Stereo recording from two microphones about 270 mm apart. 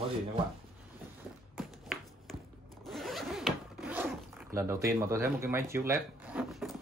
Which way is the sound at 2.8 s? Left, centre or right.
Centre.